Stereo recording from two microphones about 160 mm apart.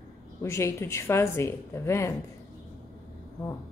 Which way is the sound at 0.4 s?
15° left (ahead or behind).